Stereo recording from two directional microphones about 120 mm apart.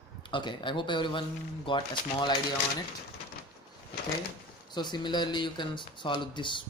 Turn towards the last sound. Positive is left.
turn(degrees=40)  # may be behind; listen again after turning